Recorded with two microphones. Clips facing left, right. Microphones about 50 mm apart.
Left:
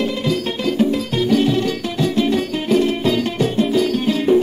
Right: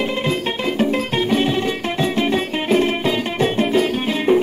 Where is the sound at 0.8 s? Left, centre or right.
Right.